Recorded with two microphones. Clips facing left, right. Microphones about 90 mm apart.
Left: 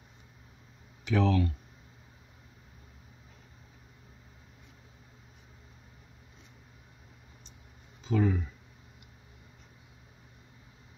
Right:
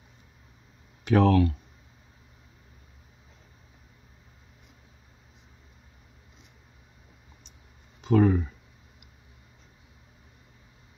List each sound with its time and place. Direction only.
1.0 s speech: 55° right (ahead or behind)
8.0 s speech: 60° right (ahead or behind)